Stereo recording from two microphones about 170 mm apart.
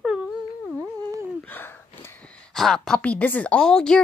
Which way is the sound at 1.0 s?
20° right (ahead or behind).